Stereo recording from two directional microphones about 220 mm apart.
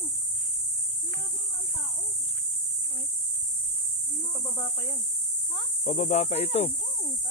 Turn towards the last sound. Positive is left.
turn(degrees=30)  # may be behind; listen again after turning